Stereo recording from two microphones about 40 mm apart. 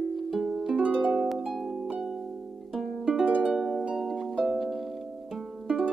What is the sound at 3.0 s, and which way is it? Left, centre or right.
Harp, right.